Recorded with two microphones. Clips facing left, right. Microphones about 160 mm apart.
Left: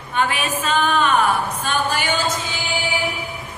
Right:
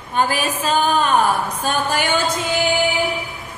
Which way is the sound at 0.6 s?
35° right (ahead or behind).